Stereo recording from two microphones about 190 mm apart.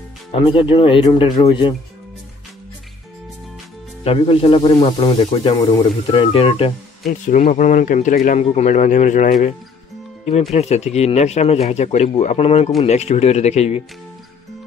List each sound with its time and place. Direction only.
0.3 s speech: 30° left (ahead or behind)
4.0 s speech: 30° left (ahead or behind)
7.1 s speech: 40° left (ahead or behind)
10.5 s speech: 35° left (ahead or behind)